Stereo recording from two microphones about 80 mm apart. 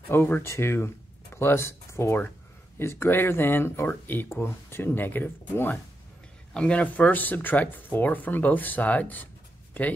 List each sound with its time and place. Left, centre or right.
0.1 s speech: left
6.5 s speech: centre